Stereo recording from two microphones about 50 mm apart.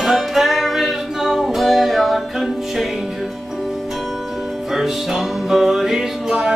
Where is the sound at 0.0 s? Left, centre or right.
Centre.